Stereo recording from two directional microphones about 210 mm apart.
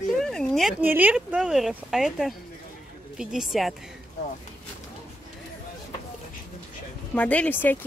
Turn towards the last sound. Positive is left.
turn(degrees=10)  # may be behind; listen again after turning